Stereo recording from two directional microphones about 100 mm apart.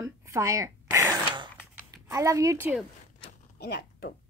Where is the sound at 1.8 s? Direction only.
30° right (ahead or behind).